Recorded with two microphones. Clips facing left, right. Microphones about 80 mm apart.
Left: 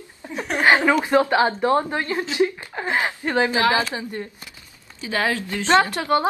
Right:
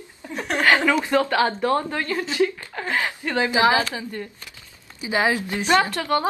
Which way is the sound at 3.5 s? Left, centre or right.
Right.